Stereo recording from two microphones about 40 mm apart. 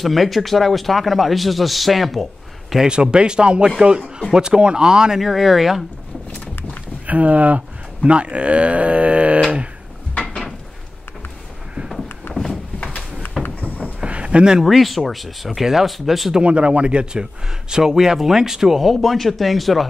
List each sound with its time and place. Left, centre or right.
0.0 s a man's voice: centre
2.8 s speech: right
5.2 s a man's voice: centre
7.1 s speech: right
12.3 s a sound: left
13.6 s a sound: left
14.0 s a sound: right
14.6 s a man's voice: centre
16.3 s a man's voice: right; by 18.9 s centre
18.9 s a man's voice: centre